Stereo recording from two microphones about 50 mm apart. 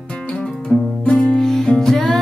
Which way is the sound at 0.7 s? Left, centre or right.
Left.